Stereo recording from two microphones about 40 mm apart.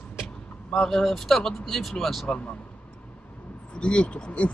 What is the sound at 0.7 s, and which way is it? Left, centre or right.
Speech, centre.